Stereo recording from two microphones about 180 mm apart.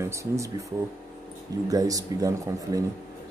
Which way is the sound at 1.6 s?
20° right (ahead or behind).